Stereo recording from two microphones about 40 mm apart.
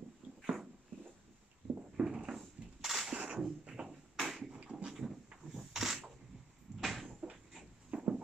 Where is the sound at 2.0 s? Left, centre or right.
Centre.